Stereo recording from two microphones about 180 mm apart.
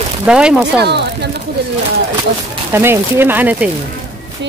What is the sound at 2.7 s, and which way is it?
Speech, 15° right (ahead or behind).